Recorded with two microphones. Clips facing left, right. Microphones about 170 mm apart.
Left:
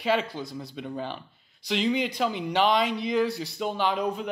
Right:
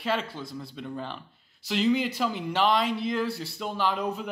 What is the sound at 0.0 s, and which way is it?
Speech, centre (ahead or behind).